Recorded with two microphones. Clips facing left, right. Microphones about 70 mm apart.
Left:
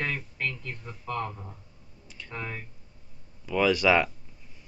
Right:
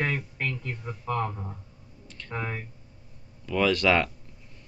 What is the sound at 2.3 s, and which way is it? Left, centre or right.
Speech, centre.